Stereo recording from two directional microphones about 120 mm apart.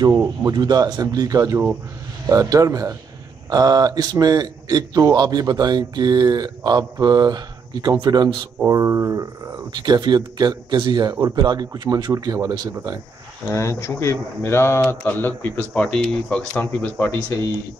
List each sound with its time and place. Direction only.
0.4 s a man's voice: 35° right (ahead or behind)
8.6 s a man's voice: 25° right (ahead or behind)
13.5 s speech: 25° left (ahead or behind)